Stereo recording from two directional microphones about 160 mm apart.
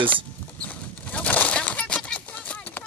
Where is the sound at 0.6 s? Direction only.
10° left (ahead or behind).